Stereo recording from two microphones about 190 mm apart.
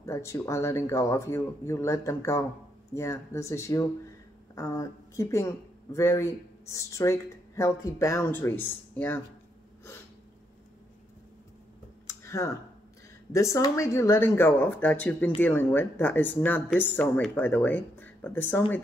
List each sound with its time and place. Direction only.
0.0 s speech: 15° left (ahead or behind)
12.1 s a sound: 15° left (ahead or behind)
13.3 s speech: 15° left (ahead or behind)